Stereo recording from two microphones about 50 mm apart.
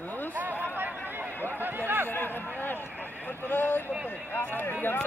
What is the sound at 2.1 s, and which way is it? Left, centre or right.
Speech, left.